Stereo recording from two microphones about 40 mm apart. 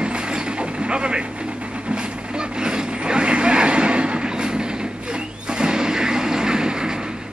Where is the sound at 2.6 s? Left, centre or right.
Right.